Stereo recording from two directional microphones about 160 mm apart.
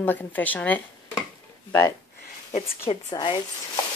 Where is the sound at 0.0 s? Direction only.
10° left (ahead or behind).